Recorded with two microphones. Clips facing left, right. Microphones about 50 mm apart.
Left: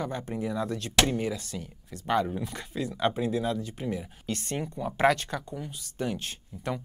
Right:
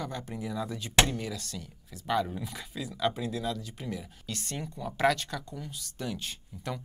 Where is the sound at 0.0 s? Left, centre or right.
Centre.